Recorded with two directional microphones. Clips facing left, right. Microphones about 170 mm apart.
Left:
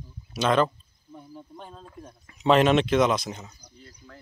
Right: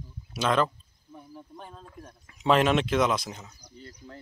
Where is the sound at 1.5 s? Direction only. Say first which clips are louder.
Left 2 dB; 20° left (ahead or behind).